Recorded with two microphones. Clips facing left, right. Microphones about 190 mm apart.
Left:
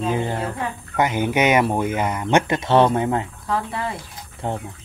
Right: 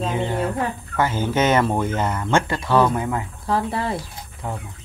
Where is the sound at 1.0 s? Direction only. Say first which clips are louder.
Left 1 dB; 15° left (ahead or behind).